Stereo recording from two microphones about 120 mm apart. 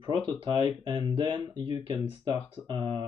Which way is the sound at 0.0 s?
35° right (ahead or behind).